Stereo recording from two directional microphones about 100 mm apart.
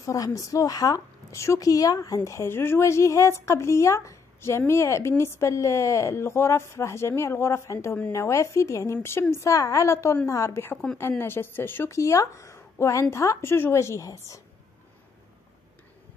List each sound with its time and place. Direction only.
0.0 s a woman's voice: 35° left (ahead or behind)